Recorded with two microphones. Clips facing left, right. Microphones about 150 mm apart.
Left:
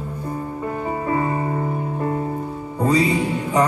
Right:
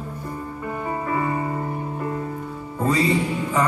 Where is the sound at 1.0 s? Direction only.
25° left (ahead or behind).